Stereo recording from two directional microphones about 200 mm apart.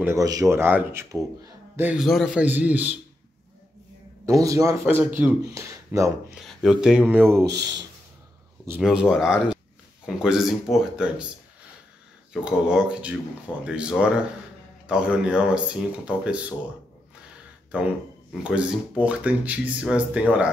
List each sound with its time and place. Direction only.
0.0 s speech: 15° right (ahead or behind)
4.3 s speech: 15° right (ahead or behind)
6.3 s speech: centre (ahead or behind)
8.6 s speech: 5° right (ahead or behind)
12.3 s speech: 5° right (ahead or behind)
18.3 s speech: 5° right (ahead or behind)